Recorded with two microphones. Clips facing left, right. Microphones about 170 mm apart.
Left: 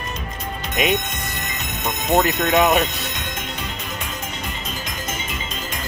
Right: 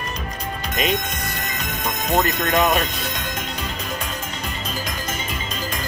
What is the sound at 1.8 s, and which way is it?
Speech, 25° left (ahead or behind).